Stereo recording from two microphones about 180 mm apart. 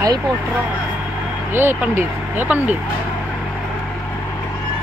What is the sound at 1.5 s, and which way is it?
Speech, 10° right (ahead or behind).